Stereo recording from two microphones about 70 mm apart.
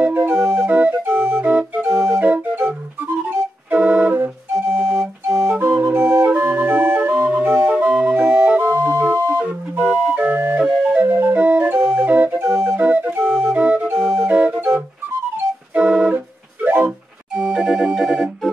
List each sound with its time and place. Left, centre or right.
0.0 s music: right
1.4 s organ: centre
2.1 s music: right
3.7 s music: centre
4.1 s organ: right
5.6 s music: right
8.1 s organ: right
9.8 s music: right
12.7 s music: right
14.2 s organ: right
15.7 s music: centre
16.6 s a sound: right
17.4 s music: centre